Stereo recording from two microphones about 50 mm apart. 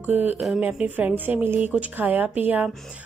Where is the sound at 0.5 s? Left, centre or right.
Right.